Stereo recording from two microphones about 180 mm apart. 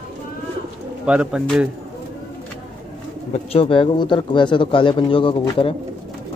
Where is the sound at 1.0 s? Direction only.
5° right (ahead or behind).